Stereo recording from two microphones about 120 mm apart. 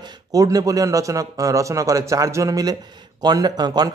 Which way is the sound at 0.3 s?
30° right (ahead or behind).